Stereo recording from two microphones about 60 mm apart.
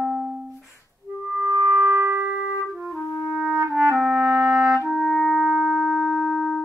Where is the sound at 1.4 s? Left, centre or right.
Right.